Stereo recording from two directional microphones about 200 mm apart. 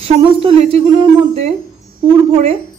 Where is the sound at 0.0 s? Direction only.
30° right (ahead or behind).